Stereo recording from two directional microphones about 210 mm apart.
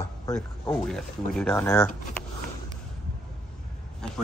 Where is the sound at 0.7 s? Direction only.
Centre (ahead or behind).